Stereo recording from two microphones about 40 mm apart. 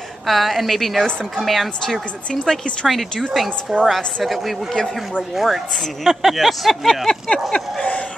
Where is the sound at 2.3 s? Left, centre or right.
Centre.